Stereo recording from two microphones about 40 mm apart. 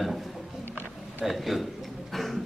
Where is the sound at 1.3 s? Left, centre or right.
Centre.